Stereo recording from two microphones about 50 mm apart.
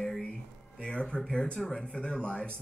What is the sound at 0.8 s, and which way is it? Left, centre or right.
Speech, centre.